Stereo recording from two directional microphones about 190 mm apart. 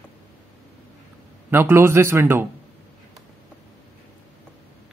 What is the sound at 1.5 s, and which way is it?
Speech, 10° right (ahead or behind).